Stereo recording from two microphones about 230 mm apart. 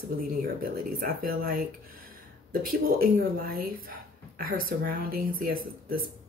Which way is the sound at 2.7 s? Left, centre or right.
Right.